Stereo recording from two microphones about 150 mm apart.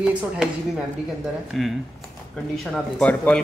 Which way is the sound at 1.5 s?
Centre (ahead or behind).